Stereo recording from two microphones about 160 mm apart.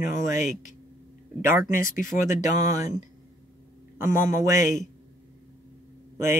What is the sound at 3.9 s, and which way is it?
Speech, 20° right (ahead or behind).